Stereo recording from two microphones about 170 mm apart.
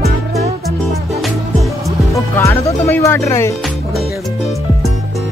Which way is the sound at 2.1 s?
15° left (ahead or behind).